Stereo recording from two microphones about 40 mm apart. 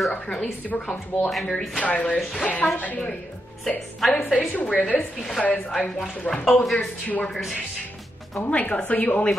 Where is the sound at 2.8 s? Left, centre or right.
Left.